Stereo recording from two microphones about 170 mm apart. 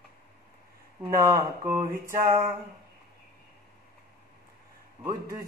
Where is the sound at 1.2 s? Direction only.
15° right (ahead or behind).